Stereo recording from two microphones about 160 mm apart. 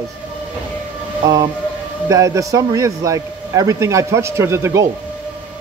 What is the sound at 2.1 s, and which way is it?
A man's voice, 20° right (ahead or behind).